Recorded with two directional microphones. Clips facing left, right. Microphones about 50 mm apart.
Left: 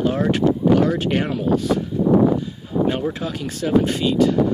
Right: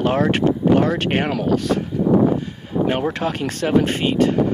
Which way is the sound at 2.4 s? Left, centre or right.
Right.